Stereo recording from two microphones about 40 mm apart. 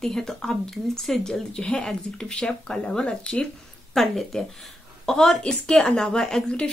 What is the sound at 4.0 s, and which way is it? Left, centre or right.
Speech, centre.